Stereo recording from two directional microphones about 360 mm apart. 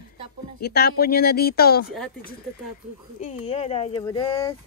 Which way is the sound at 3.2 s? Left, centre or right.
Centre.